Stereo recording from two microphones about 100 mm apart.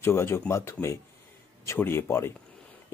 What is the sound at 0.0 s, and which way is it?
Speech, 25° left (ahead or behind).